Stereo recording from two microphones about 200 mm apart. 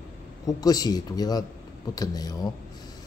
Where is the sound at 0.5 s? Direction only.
20° left (ahead or behind).